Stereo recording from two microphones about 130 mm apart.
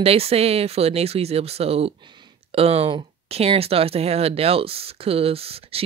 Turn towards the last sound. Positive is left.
turn(degrees=-50)  # may be behind; listen again after turning